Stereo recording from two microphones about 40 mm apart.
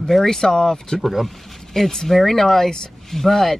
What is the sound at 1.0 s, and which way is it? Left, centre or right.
Speech, centre.